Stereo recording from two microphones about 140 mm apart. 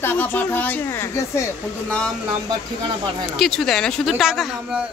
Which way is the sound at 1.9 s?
5° left (ahead or behind).